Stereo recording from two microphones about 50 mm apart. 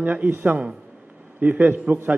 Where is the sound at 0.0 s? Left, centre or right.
Right.